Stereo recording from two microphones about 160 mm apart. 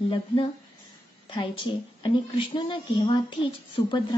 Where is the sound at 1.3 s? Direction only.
30° left (ahead or behind).